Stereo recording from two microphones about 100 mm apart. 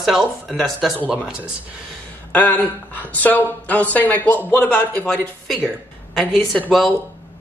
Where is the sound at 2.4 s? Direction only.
15° left (ahead or behind).